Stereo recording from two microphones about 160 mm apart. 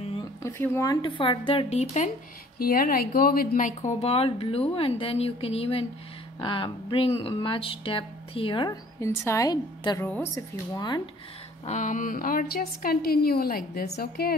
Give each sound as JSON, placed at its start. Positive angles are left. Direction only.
{"t": 0.0, "sound": "a sound", "side_deg": 35}
{"t": 0.4, "sound": "speech", "side_deg": 15}
{"t": 1.0, "sound": "speech", "side_deg": 30}
{"t": 2.6, "sound": "speech", "side_deg": 65}
{"t": 9.0, "sound": "a woman's voice", "side_deg": 20}
{"t": 10.0, "sound": "a woman's voice", "side_deg": 15}
{"t": 11.6, "sound": "a woman's voice", "side_deg": 50}